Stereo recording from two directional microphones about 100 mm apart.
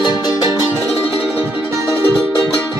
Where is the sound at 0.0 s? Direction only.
45° left (ahead or behind).